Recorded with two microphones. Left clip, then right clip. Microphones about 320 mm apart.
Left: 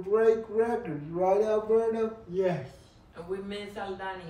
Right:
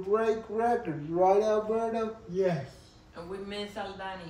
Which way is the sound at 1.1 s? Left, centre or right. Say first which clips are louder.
Right 1 dB; centre.